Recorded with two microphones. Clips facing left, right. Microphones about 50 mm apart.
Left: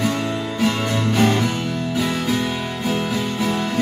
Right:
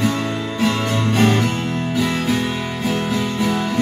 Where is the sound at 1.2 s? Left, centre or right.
Right.